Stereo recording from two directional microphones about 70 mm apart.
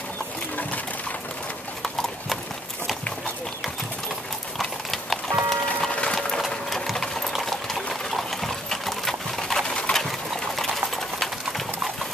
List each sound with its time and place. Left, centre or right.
1.8 s clip-clop: centre
4.6 s livestock: centre
5.9 s a sound: centre
6.1 s sewing machine: centre
10.5 s clip-clop: centre